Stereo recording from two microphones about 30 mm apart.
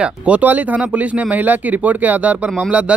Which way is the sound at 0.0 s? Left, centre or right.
Right.